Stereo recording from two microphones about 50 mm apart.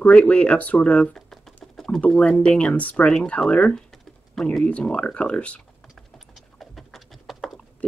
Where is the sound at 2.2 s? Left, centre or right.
Left.